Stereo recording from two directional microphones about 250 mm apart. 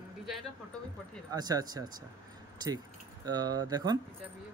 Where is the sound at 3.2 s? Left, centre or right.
Centre.